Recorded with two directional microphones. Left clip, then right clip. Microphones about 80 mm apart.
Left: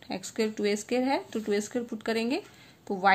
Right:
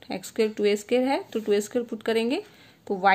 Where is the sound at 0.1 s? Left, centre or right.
Right.